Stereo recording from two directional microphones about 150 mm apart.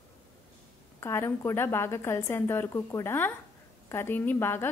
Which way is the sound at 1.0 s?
15° left (ahead or behind).